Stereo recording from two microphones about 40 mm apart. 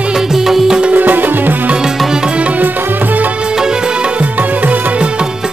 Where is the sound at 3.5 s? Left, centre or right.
Centre.